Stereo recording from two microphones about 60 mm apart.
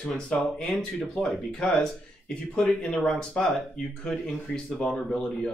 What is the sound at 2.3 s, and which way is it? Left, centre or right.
Speech, left.